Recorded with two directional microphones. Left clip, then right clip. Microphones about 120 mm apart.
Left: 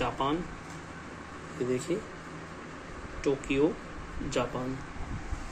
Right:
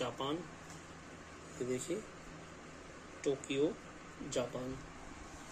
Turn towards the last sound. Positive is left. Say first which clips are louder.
# left 7 dB
turn(degrees=-20)  # may be behind; listen again after turning